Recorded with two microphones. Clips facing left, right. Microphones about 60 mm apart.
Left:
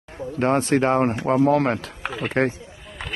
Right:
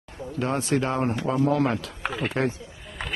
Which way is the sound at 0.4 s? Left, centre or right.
Left.